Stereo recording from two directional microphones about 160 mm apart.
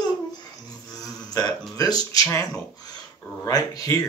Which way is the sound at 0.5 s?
20° left (ahead or behind).